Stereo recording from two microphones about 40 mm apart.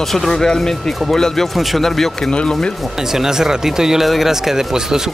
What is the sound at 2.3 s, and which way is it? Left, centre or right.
Speech, left.